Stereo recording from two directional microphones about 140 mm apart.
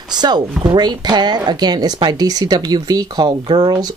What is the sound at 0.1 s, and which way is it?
Speech, 30° right (ahead or behind).